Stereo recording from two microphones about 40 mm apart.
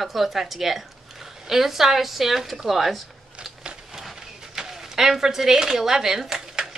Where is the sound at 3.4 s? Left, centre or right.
Centre.